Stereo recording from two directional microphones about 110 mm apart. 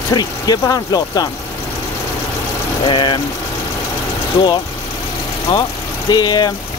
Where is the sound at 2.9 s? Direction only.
45° left (ahead or behind).